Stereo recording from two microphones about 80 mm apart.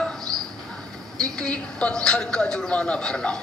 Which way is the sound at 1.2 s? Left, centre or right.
Centre.